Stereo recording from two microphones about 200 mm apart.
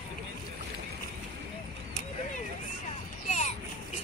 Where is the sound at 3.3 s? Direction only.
35° left (ahead or behind).